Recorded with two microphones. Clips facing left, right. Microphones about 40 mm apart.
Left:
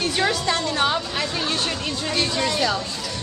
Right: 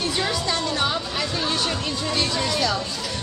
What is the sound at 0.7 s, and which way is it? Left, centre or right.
Speech, centre.